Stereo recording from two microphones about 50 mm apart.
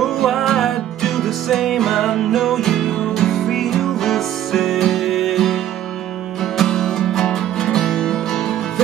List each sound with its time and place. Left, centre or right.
0.0 s music: centre
6.6 s music: centre